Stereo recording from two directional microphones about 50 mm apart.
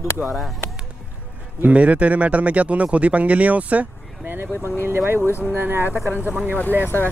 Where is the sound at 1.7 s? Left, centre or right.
Right.